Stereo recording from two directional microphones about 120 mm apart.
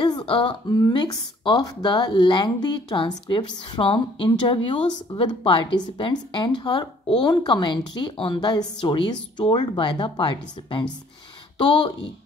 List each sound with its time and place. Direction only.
0.0 s a sound: 40° left (ahead or behind)
0.7 s speech: 30° left (ahead or behind)
11.5 s speech: 40° left (ahead or behind)